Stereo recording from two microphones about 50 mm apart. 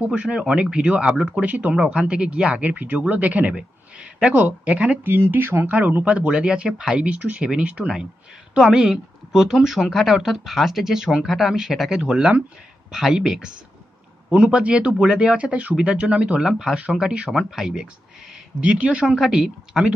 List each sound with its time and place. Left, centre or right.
0.0 s speech: right
1.5 s speech: right
1.9 s speech: centre
5.0 s speech: right
5.7 s speech: right
8.5 s speech: centre
14.3 s speech: right
16.4 s speech: centre
18.6 s speech: right
19.1 s speech: centre